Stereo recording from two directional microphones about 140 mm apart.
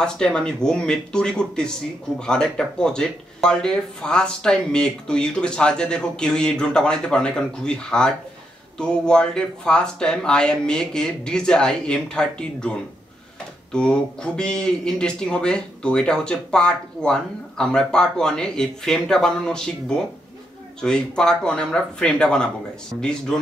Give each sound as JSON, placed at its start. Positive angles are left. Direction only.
{"t": 0.0, "sound": "speech", "side_deg": 5}